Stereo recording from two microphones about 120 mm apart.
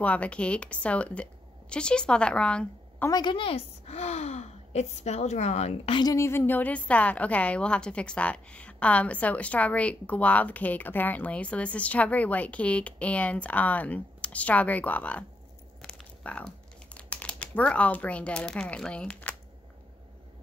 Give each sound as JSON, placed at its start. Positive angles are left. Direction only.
{"t": 0.0, "sound": "a woman's voice", "side_deg": 10}
{"t": 3.1, "sound": "speech", "side_deg": 40}
{"t": 5.9, "sound": "a woman's voice", "side_deg": 40}
{"t": 6.1, "sound": "a woman's voice", "side_deg": 20}
{"t": 15.8, "sound": "crumpling", "side_deg": 10}